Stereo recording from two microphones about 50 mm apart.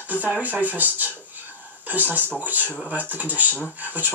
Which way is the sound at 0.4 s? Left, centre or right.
Right.